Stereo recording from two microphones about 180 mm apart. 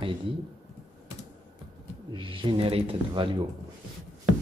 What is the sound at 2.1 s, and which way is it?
Speech, 30° right (ahead or behind).